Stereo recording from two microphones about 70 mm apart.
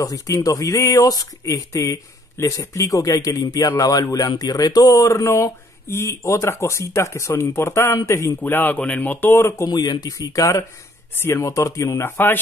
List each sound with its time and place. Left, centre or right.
0.0 s speech: left
4.9 s speech: left
8.4 s speech: left
9.7 s speech: left
11.1 s speech: left